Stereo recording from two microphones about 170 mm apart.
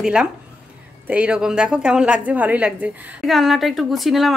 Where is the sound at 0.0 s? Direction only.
5° right (ahead or behind).